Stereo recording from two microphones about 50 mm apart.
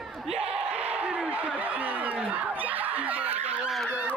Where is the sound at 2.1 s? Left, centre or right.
Right.